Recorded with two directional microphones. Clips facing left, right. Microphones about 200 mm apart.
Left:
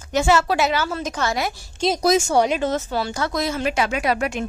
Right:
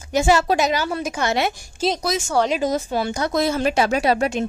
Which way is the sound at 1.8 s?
5° right (ahead or behind).